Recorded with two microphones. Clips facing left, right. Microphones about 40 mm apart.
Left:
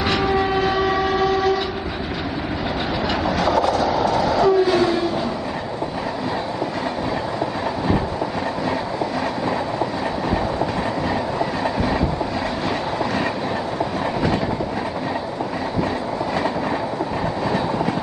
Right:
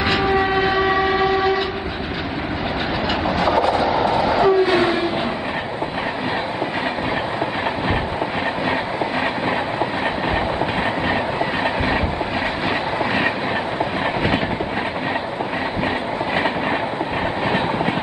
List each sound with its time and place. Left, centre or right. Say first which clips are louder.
0.0 s train: right 1 dB; right
3.3 s train: right 1 dB; right